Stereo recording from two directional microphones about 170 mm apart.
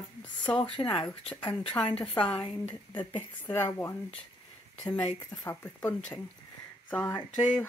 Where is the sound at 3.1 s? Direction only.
15° left (ahead or behind).